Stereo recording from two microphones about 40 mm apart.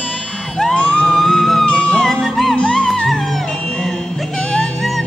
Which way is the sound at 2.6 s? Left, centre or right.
Left.